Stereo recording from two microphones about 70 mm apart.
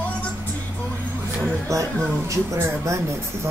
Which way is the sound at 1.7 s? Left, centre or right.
Right.